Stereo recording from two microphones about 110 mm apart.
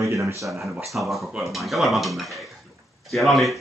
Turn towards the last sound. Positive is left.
turn(degrees=0)  # may be behind; listen again after turning